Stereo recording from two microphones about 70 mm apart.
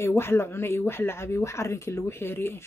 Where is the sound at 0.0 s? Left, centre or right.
Left.